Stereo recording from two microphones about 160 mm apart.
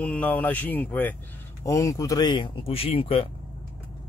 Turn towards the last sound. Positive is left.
turn(degrees=35)  # may be behind; listen again after turning